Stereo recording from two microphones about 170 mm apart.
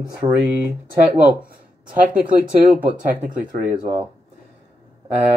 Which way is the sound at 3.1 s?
10° right (ahead or behind).